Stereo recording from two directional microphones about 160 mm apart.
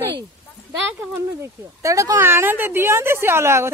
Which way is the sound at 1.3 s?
20° right (ahead or behind).